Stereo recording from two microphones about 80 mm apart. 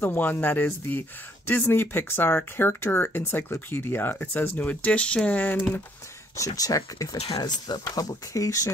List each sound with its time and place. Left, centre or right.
0.0 s speech: left
6.3 s speech: left